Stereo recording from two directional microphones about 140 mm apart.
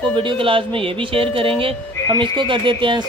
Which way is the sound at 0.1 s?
35° right (ahead or behind).